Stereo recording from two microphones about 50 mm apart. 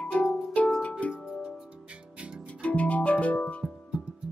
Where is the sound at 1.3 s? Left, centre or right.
Centre.